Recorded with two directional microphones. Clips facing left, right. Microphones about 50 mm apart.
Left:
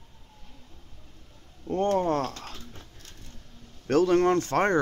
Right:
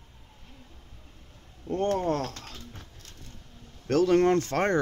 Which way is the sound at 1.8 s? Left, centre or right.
Left.